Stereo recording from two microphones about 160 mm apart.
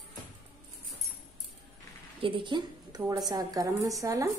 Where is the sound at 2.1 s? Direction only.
30° right (ahead or behind).